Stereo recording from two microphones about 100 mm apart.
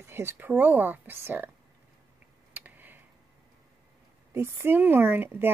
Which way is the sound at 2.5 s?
20° right (ahead or behind).